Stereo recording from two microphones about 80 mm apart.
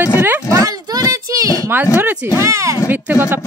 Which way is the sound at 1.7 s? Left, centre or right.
Right.